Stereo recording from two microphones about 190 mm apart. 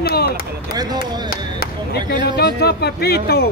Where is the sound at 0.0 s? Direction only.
55° left (ahead or behind).